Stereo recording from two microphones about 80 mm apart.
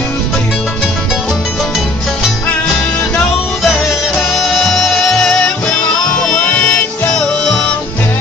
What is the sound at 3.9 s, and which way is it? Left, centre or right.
Music, centre.